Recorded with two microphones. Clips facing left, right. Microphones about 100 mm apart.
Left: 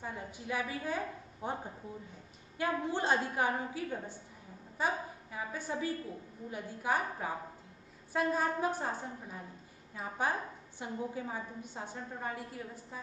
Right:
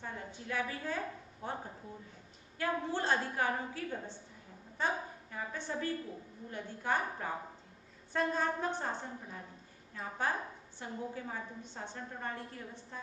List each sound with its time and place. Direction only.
0.0 s a woman's voice: 15° left (ahead or behind)